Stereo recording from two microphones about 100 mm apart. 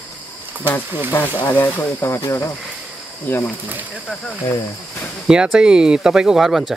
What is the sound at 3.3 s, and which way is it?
Speech, 20° left (ahead or behind).